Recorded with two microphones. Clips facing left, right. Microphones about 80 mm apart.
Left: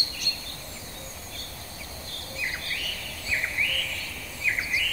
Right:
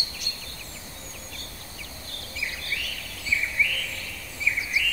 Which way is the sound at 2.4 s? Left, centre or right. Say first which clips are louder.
Left 1 dB; left.